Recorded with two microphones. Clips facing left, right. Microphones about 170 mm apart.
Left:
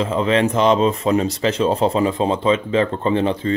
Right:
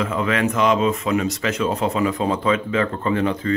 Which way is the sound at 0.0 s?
25° left (ahead or behind).